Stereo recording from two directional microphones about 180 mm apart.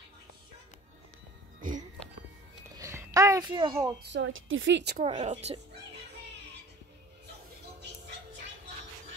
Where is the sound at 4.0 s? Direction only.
80° right.